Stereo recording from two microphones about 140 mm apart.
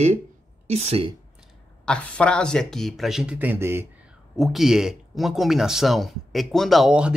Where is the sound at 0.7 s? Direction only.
50° right (ahead or behind).